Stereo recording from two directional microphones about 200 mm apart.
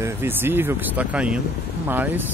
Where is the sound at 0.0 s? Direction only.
10° right (ahead or behind).